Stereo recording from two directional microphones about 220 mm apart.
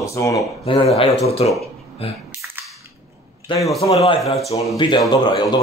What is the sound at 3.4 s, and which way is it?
A man's voice, 15° left (ahead or behind).